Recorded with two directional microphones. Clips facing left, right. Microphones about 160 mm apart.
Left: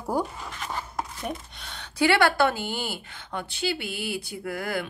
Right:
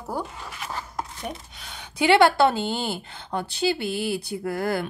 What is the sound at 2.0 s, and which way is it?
A woman's voice, 20° right (ahead or behind).